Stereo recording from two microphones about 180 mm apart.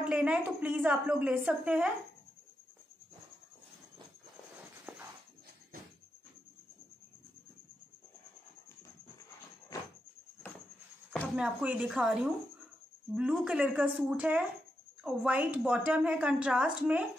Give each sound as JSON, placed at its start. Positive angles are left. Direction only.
{"t": 0.0, "sound": "a woman's voice", "side_deg": -5}
{"t": 4.9, "sound": "a sound", "side_deg": -10}
{"t": 9.7, "sound": "vehicle", "side_deg": 20}
{"t": 11.3, "sound": "a woman's voice", "side_deg": -5}